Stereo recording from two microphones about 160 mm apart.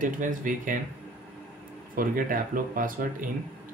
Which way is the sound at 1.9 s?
60° right (ahead or behind).